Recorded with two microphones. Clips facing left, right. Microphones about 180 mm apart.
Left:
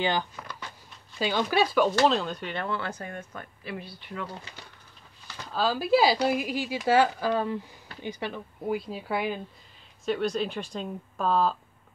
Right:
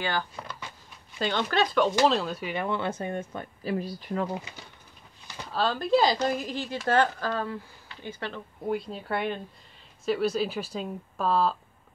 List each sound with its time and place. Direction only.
0.0 s speech: 20° left (ahead or behind)
1.2 s a woman's voice: 10° left (ahead or behind); by 4.3 s 40° right (ahead or behind)
5.5 s a woman's voice: centre (ahead or behind)
8.7 s speech: centre (ahead or behind)